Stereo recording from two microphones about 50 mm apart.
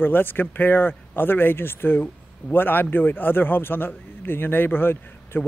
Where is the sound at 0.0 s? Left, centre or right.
Left.